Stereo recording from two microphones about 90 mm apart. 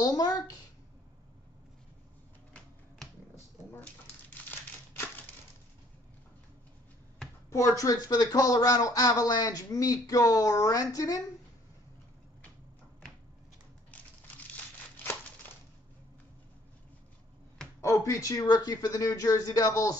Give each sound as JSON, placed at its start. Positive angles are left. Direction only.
{"t": 0.0, "sound": "a sound", "side_deg": 45}
{"t": 3.8, "sound": "crumpling", "side_deg": 20}
{"t": 7.4, "sound": "speech", "side_deg": 35}
{"t": 17.7, "sound": "speech", "side_deg": 35}